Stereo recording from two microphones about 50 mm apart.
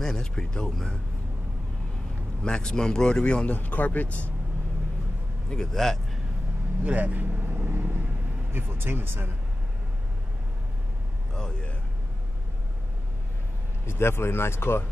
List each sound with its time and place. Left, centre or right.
0.0 s a man's voice: centre
2.4 s a man's voice: centre
3.4 s speech: left
5.5 s a man's voice: centre
6.8 s vehicle: right
8.5 s speech: right
13.8 s speech: left